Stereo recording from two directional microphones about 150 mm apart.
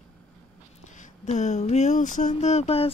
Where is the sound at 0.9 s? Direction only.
50° left (ahead or behind).